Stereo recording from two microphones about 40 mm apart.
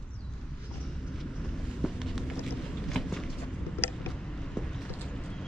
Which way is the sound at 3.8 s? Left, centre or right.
Left.